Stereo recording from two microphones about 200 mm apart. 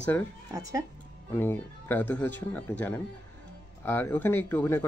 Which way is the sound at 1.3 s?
10° left (ahead or behind).